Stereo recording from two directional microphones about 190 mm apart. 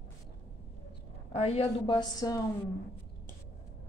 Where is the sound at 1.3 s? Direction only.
35° left (ahead or behind).